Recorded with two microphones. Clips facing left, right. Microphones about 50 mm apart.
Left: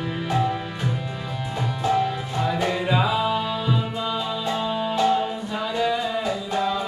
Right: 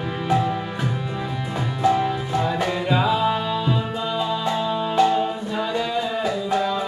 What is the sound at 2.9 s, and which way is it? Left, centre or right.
Music, centre.